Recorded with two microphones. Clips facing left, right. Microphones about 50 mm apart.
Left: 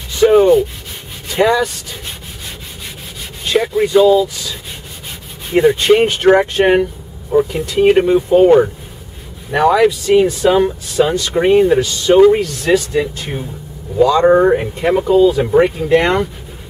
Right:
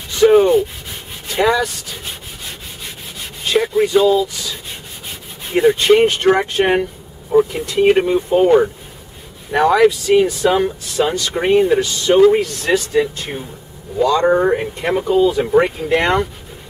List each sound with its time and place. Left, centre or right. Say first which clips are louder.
0.2 s rub: left 2 dB; centre
1.3 s speech: left 2 dB; centre
3.4 s speech: left 1 dB; centre
5.5 s speech: left 1 dB; centre